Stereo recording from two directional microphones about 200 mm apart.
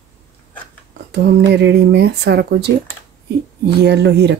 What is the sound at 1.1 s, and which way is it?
Speech, 55° right (ahead or behind).